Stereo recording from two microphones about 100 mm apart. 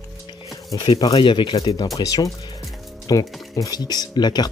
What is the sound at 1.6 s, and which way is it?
Speech, 40° left (ahead or behind).